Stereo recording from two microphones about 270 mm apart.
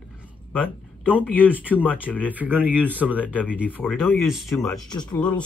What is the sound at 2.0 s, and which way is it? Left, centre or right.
Speech, centre.